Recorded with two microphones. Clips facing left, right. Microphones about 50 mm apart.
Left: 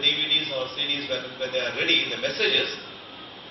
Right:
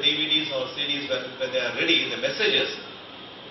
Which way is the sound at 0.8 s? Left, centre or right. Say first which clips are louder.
Even; right.